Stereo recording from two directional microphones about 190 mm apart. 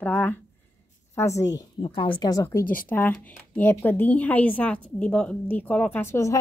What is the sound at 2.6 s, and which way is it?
Speech, 45° left (ahead or behind).